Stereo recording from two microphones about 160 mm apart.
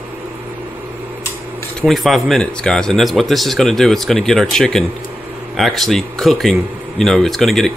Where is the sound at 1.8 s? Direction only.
Centre (ahead or behind).